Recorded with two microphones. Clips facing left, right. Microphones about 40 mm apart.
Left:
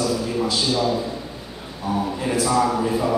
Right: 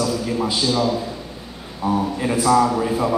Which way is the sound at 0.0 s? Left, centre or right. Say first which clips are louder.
Right 1 dB; right.